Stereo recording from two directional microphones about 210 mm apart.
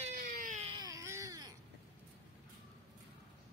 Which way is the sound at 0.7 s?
15° right (ahead or behind).